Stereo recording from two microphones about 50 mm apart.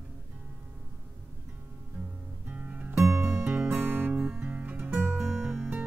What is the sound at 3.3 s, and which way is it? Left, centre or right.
Music, right.